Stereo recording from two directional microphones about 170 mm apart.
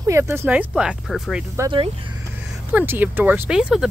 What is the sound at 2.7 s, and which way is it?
Speech, 10° right (ahead or behind).